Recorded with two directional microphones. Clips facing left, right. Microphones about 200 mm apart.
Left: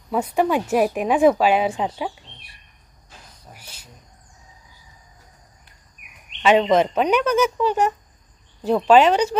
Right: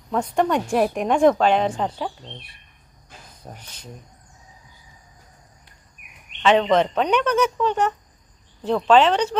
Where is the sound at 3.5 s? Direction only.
10° left (ahead or behind).